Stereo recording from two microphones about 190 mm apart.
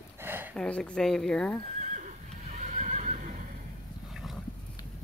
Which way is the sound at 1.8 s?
40° right (ahead or behind).